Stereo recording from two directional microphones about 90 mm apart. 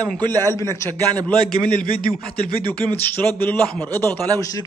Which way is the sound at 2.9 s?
25° left (ahead or behind).